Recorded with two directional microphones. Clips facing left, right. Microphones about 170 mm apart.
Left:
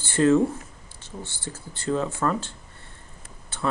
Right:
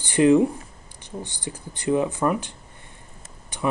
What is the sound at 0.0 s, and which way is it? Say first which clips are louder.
Speech: right 3 dB; 15° right (ahead or behind).